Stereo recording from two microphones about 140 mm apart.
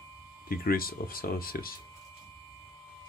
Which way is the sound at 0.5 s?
90° left.